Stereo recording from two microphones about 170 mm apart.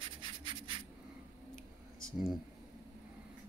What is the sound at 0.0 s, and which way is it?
Writing, 30° right (ahead or behind).